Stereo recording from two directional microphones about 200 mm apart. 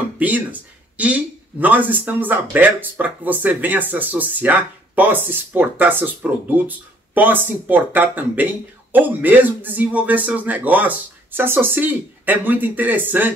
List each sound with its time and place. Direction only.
0.2 s speech: 10° right (ahead or behind)